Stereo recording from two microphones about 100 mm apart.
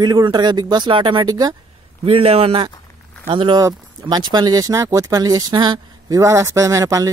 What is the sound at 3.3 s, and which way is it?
Speech, 50° right (ahead or behind).